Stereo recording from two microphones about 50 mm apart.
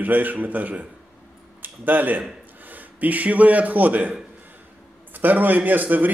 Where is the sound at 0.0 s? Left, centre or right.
Right.